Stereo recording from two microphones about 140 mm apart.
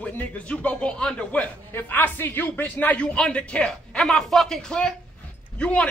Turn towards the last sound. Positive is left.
turn(degrees=10)  # may be behind; listen again after turning